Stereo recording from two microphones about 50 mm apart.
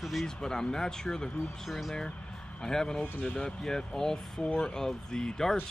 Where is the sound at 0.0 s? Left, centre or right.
Centre.